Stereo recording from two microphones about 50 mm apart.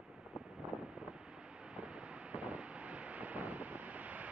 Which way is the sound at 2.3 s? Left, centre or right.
Right.